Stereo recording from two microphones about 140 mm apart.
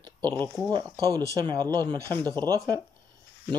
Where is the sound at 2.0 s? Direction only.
15° left (ahead or behind).